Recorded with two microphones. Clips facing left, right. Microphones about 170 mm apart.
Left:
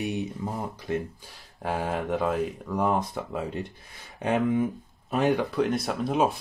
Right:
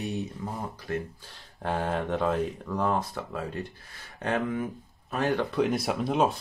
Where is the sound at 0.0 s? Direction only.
15° left (ahead or behind).